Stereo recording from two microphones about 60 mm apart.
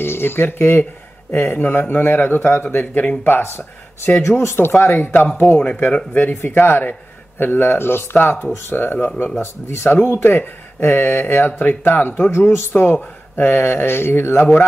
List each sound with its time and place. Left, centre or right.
0.0 s speech: left
9.4 s speech: left